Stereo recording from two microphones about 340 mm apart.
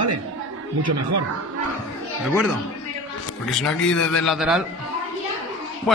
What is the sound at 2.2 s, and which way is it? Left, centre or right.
Speech, centre.